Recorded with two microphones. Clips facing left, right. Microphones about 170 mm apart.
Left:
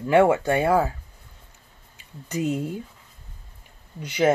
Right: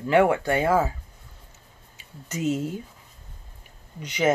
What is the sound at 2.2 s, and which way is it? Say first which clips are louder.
Speech: left 1 dB; 5° right (ahead or behind).